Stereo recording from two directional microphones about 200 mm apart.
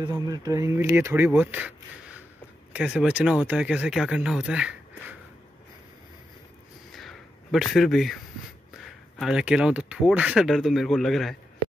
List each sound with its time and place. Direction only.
0.0 s speech: 20° right (ahead or behind)
6.9 s a sound: centre (ahead or behind)
8.8 s speech: centre (ahead or behind)